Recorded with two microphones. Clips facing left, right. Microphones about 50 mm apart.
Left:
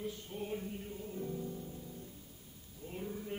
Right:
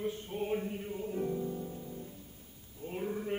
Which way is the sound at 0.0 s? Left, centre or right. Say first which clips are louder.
Right 6 dB; right.